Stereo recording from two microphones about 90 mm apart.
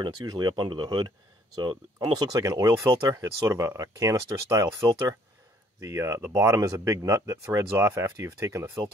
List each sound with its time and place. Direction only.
0.0 s speech: 50° right (ahead or behind)
2.3 s speech: 40° right (ahead or behind)